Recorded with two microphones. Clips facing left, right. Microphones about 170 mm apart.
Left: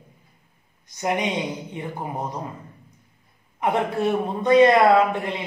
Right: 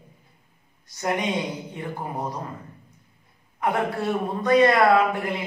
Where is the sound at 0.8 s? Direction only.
20° left (ahead or behind).